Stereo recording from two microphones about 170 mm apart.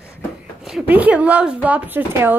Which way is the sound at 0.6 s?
5° right (ahead or behind).